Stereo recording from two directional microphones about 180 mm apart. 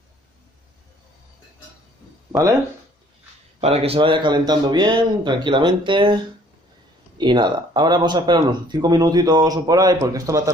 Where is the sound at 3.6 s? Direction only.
35° right (ahead or behind).